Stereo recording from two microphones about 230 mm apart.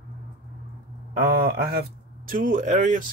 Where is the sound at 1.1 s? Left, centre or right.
Right.